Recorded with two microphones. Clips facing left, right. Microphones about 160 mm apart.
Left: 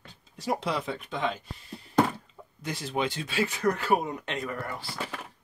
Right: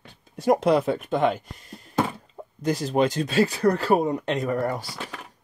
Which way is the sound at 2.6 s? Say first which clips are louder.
Right 9 dB; 40° right (ahead or behind).